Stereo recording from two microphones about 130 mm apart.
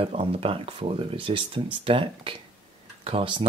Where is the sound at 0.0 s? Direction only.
45° right (ahead or behind).